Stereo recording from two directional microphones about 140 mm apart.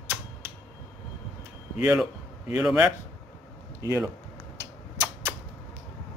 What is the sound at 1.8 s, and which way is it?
A man's voice, 10° right (ahead or behind).